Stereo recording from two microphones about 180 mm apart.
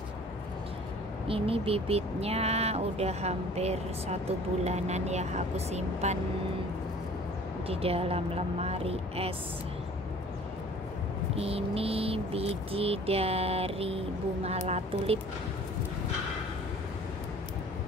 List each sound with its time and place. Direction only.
1.2 s speech: 30° right (ahead or behind)
7.6 s speech: 35° right (ahead or behind)
11.3 s speech: 35° right (ahead or behind)